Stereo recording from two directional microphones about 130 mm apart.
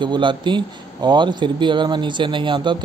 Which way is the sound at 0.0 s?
35° right (ahead or behind).